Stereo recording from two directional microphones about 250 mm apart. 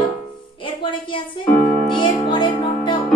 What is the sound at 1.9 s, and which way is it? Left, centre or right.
Music, centre.